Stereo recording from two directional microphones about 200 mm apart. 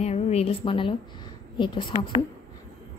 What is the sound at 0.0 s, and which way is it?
A woman's voice, 30° left (ahead or behind).